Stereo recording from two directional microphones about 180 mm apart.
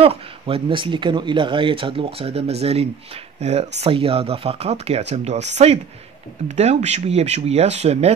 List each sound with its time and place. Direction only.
0.0 s speech: 30° right (ahead or behind)